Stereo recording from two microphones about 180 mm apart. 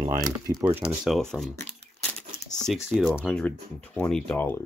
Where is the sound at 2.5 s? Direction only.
Centre (ahead or behind).